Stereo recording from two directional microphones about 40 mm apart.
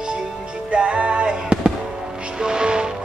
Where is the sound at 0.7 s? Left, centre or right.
Right.